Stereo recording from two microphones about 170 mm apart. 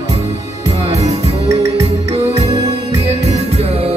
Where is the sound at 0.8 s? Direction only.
40° right (ahead or behind).